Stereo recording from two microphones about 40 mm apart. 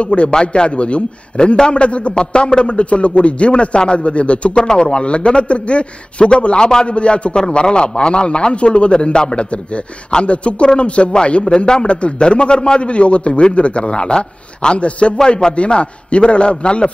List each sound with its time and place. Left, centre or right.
0.0 s a man's voice: left
4.6 s a man's voice: centre
15.1 s speech: centre
15.5 s a man's voice: left